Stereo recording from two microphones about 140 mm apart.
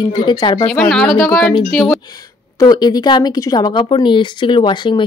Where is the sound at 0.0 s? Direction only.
30° left (ahead or behind).